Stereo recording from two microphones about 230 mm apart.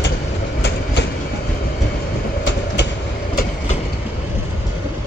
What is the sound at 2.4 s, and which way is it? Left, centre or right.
Train, left.